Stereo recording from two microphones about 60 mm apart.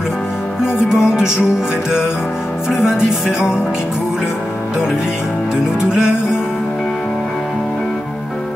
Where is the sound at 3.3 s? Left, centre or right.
Left.